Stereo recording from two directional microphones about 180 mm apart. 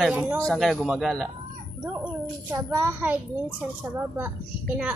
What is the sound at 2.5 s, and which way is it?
Speech, 10° right (ahead or behind).